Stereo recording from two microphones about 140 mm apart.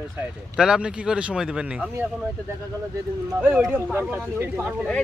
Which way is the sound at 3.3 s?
10° right (ahead or behind).